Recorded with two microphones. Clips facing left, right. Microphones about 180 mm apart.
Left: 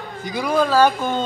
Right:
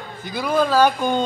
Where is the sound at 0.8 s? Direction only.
10° right (ahead or behind).